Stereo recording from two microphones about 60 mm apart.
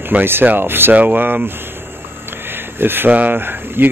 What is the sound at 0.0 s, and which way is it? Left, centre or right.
Speech, right.